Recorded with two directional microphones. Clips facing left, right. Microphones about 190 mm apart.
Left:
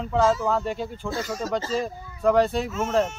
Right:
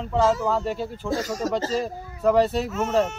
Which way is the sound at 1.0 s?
40° right (ahead or behind).